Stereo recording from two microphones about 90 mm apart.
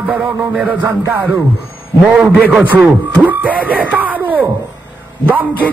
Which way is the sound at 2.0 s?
15° right (ahead or behind).